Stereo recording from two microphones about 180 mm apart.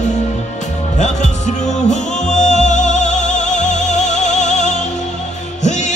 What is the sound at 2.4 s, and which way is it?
Music, 40° left (ahead or behind).